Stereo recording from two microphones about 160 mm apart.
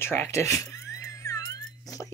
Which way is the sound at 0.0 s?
15° left (ahead or behind).